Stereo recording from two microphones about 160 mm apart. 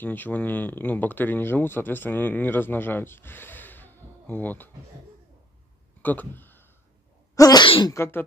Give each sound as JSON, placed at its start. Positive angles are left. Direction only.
{"t": 0.0, "sound": "speech", "side_deg": 10}
{"t": 6.0, "sound": "speech", "side_deg": 10}
{"t": 7.3, "sound": "sneeze", "side_deg": 25}
{"t": 7.9, "sound": "speech", "side_deg": 15}